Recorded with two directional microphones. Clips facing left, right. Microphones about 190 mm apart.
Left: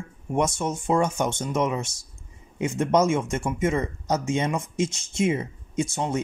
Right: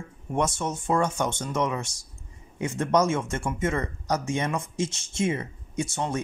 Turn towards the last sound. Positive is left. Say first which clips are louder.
# left 3 dB
turn(degrees=15)  # may be behind; listen again after turning